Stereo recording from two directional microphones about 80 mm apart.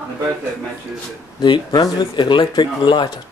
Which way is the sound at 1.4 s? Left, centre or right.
Left.